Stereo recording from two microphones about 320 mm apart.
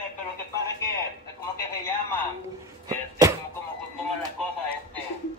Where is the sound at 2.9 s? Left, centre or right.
Centre.